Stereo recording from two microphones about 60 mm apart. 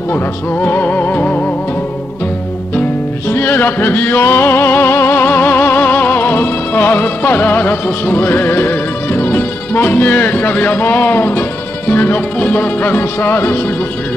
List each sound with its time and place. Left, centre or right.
0.1 s speech: left
3.3 s music: left